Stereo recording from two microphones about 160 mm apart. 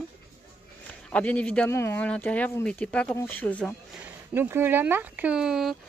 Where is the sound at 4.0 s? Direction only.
15° right (ahead or behind).